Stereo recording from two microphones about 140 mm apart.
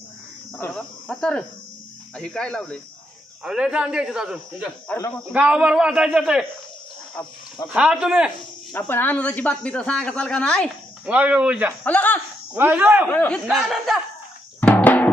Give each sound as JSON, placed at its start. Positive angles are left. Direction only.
{"t": 0.6, "sound": "a man's voice", "side_deg": 5}
{"t": 3.4, "sound": "a man's voice", "side_deg": -5}
{"t": 7.2, "sound": "speech", "side_deg": 15}
{"t": 7.7, "sound": "a man's voice", "side_deg": -5}
{"t": 8.7, "sound": "speech", "side_deg": 15}
{"t": 11.1, "sound": "a man's voice", "side_deg": -10}
{"t": 11.8, "sound": "speech", "side_deg": 10}
{"t": 12.5, "sound": "a man's voice", "side_deg": -15}
{"t": 13.1, "sound": "speech", "side_deg": 15}
{"t": 13.5, "sound": "a man's voice", "side_deg": -5}
{"t": 14.6, "sound": "drum", "side_deg": 10}